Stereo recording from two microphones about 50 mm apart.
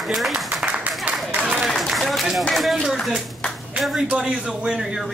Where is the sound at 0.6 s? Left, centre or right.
Right.